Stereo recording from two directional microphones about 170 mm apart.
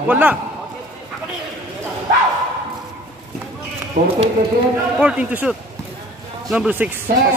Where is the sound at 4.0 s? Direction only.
50° right (ahead or behind).